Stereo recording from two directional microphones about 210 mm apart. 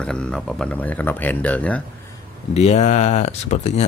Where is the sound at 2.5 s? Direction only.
30° left (ahead or behind).